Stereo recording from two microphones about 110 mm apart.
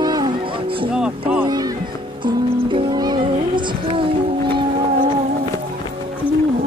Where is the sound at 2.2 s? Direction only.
50° right (ahead or behind).